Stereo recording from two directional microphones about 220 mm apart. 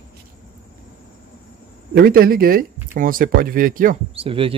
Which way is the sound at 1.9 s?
45° right (ahead or behind).